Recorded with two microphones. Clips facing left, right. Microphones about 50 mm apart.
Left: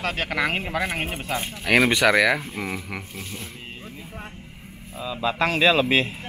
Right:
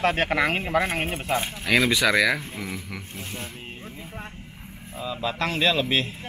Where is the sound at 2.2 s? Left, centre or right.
Centre.